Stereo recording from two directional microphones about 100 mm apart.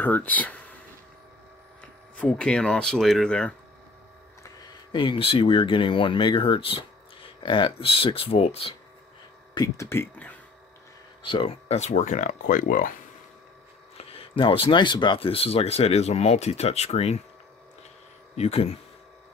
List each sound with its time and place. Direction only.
0.0 s speech: 15° left (ahead or behind)
1.8 s speech: 10° left (ahead or behind)
4.9 s speech: 60° left (ahead or behind); by 8.7 s 80° left
9.8 s speech: 25° left (ahead or behind)
11.2 s speech: 65° left (ahead or behind); by 12.0 s 80° left
13.9 s speech: 75° left (ahead or behind); by 17.2 s 90° left
18.3 s speech: 90° left